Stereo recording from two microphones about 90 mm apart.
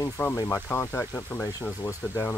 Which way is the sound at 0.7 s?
30° left (ahead or behind).